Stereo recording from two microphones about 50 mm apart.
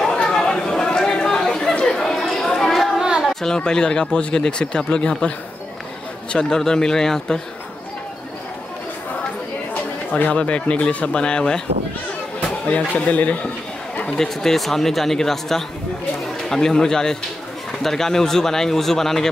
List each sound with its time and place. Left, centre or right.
0.0 s chatter: centre
3.3 s speech: centre
6.3 s speech: centre
10.3 s speech: left
12.4 s speech: left
14.1 s speech: centre